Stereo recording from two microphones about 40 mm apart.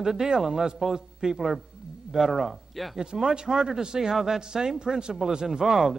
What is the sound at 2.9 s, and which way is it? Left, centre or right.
A man's voice, centre.